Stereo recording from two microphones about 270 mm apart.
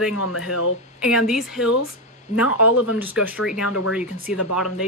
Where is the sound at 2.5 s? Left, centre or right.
Left.